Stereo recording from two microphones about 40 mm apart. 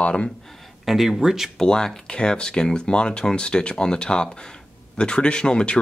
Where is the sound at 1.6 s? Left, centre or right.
Centre.